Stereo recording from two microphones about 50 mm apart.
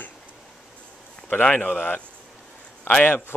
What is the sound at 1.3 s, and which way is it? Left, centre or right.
Speech, left.